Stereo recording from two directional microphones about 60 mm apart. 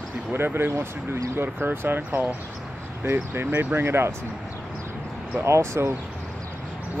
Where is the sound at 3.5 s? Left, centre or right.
Right.